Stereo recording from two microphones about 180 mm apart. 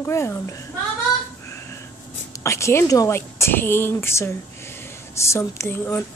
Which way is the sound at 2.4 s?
15° left (ahead or behind).